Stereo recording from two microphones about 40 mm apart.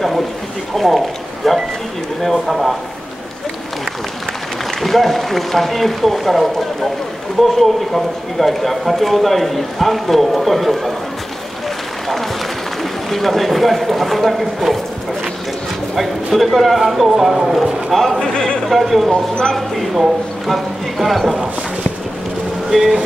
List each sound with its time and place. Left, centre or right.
0.7 s speech: centre
4.6 s speech: centre
13.1 s speech: centre
16.0 s speech: centre
18.2 s speech: left
18.7 s a man's voice: centre
22.7 s speech: centre